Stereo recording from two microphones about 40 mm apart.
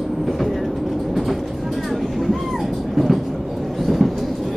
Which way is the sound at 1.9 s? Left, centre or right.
Centre.